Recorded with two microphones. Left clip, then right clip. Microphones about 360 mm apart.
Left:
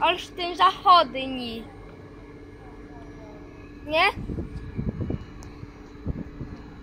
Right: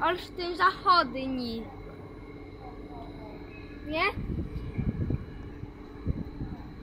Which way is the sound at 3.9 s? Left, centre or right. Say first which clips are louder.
Left 7 dB; centre.